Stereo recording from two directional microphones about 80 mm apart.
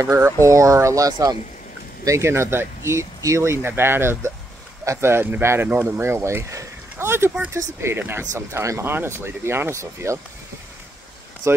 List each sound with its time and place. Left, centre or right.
0.2 s speech: right
2.0 s speech: right
11.4 s speech: right